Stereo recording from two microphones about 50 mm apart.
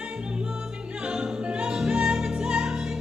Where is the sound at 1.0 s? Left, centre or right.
Centre.